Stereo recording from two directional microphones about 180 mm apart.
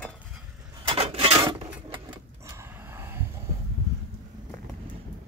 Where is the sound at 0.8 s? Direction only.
35° right (ahead or behind).